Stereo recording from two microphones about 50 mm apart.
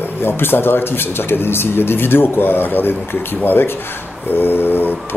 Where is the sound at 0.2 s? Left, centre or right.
Left.